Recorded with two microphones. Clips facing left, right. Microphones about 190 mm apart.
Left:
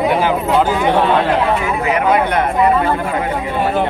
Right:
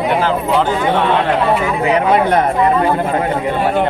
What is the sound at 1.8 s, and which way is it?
Speech, 30° right (ahead or behind).